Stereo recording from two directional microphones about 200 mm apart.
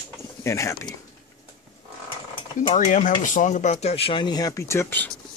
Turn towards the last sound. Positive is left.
turn(degrees=10)  # may be behind; listen again after turning